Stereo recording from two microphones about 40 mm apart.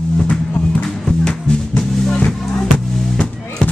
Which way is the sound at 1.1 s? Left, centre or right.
Centre.